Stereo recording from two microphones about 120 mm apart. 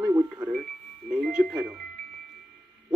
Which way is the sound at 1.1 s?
5° right (ahead or behind).